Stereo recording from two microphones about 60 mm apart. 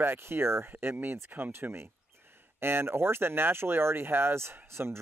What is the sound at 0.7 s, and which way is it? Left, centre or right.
Speech, right.